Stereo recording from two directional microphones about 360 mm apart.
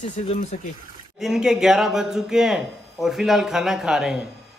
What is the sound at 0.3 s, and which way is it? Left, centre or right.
Speech, centre.